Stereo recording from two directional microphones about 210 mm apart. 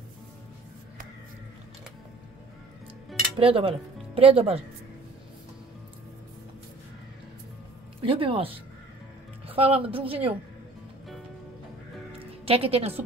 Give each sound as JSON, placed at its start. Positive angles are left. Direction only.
{"t": 3.3, "sound": "speech", "side_deg": -25}
{"t": 8.1, "sound": "a woman's voice", "side_deg": -25}
{"t": 12.1, "sound": "music", "side_deg": -25}